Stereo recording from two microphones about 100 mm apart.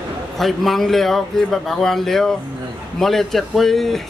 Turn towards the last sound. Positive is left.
turn(degrees=0)  # may be behind; listen again after turning